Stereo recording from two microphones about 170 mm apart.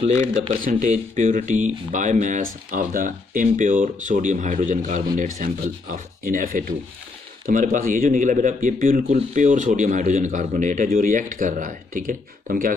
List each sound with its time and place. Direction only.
0.4 s speech: 45° right (ahead or behind)
9.0 s speech: 40° right (ahead or behind)